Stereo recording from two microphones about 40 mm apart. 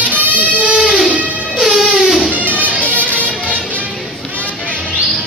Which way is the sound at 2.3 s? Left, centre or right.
Right.